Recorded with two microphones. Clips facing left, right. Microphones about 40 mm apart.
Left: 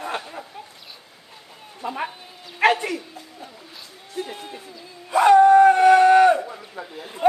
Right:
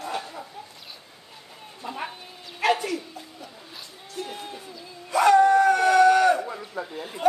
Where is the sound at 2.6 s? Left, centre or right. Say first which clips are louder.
Left 4 dB; left.